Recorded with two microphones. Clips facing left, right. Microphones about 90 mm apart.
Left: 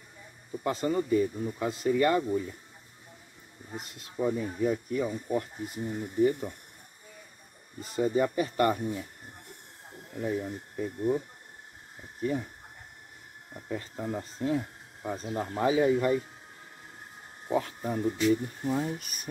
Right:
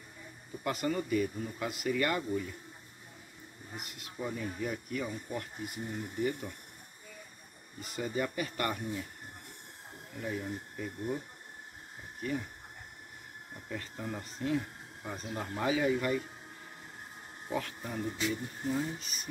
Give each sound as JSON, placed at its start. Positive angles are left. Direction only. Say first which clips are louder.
{"t": 0.7, "sound": "speech", "louder": "left 5 dB", "side_deg": 25}
{"t": 3.7, "sound": "speech", "louder": "left 7 dB", "side_deg": 30}
{"t": 7.8, "sound": "speech", "louder": "left 8 dB", "side_deg": 30}
{"t": 10.2, "sound": "speech", "louder": "left 5 dB", "side_deg": 30}
{"t": 12.2, "sound": "speech", "louder": "left 5 dB", "side_deg": 25}
{"t": 13.7, "sound": "speech", "louder": "left 5 dB", "side_deg": 30}
{"t": 17.5, "sound": "speech", "louder": "left 7 dB", "side_deg": 30}
{"t": 18.3, "sound": "speech", "louder": "left 7 dB", "side_deg": 45}